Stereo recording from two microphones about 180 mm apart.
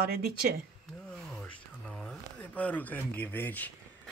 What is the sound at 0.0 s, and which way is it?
Speech, 55° right (ahead or behind).